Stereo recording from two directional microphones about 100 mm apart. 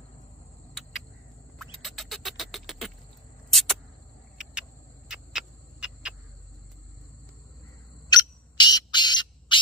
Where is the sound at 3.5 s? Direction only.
Centre (ahead or behind).